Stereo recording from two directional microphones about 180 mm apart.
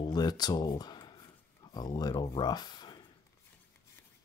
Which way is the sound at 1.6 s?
20° left (ahead or behind).